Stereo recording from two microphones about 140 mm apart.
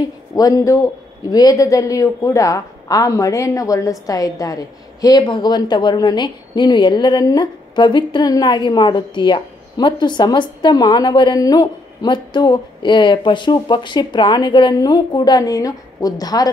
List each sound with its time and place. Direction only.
0.4 s speech: 25° left (ahead or behind)